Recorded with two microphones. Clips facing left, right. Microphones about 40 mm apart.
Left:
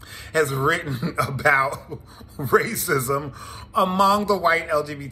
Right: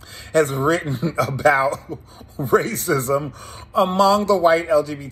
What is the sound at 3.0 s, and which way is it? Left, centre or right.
Speech, right.